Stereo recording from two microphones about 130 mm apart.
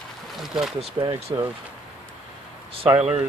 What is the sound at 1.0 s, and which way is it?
Speech, 35° right (ahead or behind).